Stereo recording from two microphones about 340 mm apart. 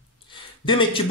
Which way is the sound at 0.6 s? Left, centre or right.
Centre.